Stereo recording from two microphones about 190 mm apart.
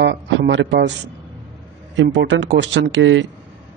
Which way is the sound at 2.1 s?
70° right (ahead or behind).